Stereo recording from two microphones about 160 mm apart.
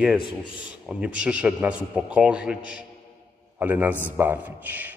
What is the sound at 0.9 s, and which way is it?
A man's voice, 5° right (ahead or behind).